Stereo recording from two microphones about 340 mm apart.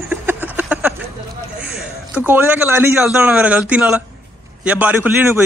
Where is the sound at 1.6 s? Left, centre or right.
Centre.